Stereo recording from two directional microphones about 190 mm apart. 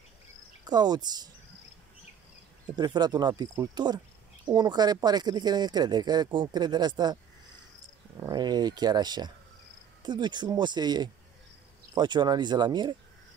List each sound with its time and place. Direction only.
0.7 s speech: 20° right (ahead or behind)
2.7 s speech: 20° right (ahead or behind)
8.2 s speech: 20° right (ahead or behind)